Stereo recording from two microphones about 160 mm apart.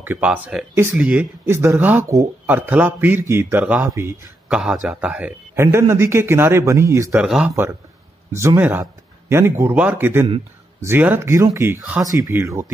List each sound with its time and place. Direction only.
0.0 s a man's voice: 10° right (ahead or behind)
7.2 s a man's voice: 5° right (ahead or behind)